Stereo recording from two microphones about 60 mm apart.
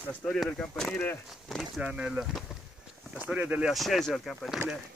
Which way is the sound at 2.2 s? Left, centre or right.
Centre.